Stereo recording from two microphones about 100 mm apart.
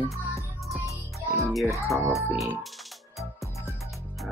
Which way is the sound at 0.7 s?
30° right (ahead or behind).